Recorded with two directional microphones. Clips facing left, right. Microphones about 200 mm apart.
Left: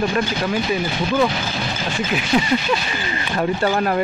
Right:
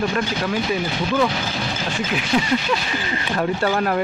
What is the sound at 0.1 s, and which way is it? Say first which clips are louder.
Speech: left 2 dB; 15° left (ahead or behind).